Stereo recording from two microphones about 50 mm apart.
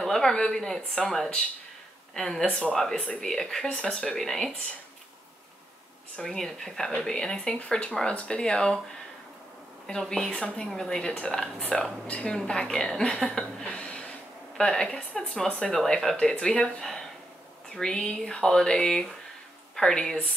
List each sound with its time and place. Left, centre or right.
0.0 s speech: centre
6.1 s speech: centre
9.8 s a woman's voice: centre
13.7 s a sound: left
14.6 s a woman's voice: centre